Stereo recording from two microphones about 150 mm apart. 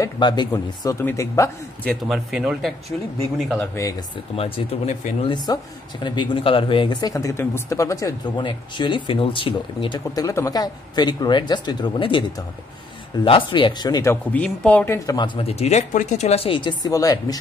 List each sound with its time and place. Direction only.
0.0 s speech: 30° left (ahead or behind)
2.0 s speech: centre (ahead or behind)
4.4 s speech: 40° left (ahead or behind); by 8.5 s 20° left (ahead or behind)
8.5 s speech: 35° left (ahead or behind)
14.3 s speech: 10° left (ahead or behind)
15.0 s speech: 30° left (ahead or behind)